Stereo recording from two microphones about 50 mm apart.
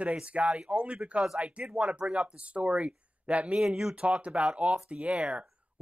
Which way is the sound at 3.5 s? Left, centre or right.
Centre.